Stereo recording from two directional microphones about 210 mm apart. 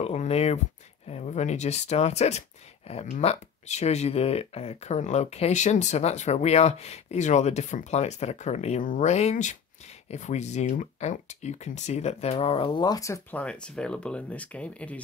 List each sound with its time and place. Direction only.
0.0 s speech: 30° left (ahead or behind); by 15.0 s 5° left (ahead or behind)